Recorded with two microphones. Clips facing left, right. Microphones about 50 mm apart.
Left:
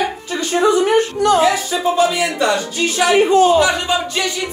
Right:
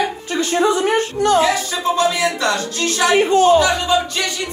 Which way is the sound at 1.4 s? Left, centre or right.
Centre.